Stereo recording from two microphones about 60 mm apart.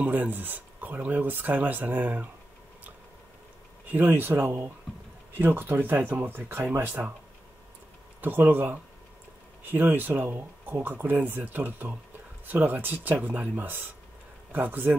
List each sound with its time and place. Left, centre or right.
0.0 s speech: right
3.8 s speech: right
8.2 s speech: right